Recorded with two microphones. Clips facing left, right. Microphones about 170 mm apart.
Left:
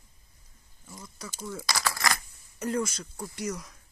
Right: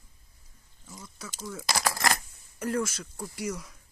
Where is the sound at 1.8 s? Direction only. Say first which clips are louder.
Right 2 dB; 35° right (ahead or behind).